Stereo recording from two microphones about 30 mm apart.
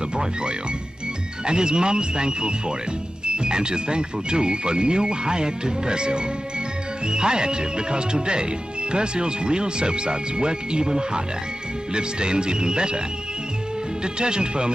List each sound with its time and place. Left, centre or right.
0.1 s speech: right
14.0 s speech: right